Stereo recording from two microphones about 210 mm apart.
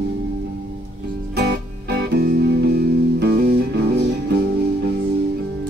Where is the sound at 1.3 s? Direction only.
50° right (ahead or behind).